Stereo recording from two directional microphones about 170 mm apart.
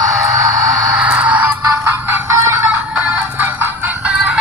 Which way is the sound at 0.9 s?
5° right (ahead or behind).